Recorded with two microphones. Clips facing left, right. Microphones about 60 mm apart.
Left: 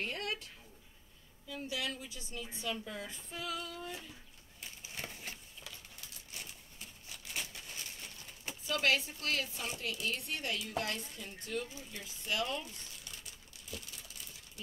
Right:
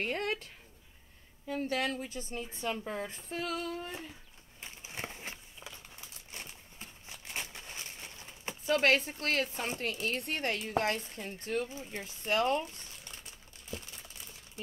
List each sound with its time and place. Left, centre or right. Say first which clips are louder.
0.0 s a woman's voice: right 5 dB; right
1.5 s a woman's voice: right 7 dB; right
4.6 s a sound: right 3 dB; right